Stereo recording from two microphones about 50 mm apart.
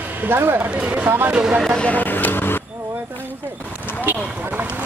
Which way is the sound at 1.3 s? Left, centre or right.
Centre.